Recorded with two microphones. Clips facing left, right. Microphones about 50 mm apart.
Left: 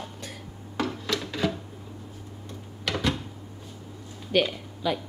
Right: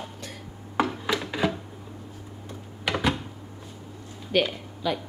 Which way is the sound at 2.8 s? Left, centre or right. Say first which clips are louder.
Right 2 dB; centre.